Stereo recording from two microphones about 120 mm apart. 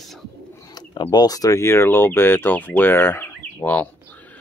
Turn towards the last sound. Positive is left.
turn(degrees=15)  # may be behind; listen again after turning